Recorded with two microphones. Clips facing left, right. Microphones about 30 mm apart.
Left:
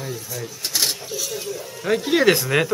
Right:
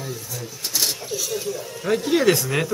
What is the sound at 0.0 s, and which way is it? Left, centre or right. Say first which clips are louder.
Rub: left 2 dB; centre.